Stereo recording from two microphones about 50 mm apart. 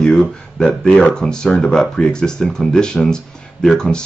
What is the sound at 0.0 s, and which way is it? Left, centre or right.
Speech, centre.